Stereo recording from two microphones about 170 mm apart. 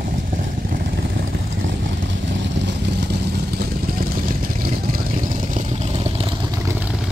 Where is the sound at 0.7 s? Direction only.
60° right (ahead or behind).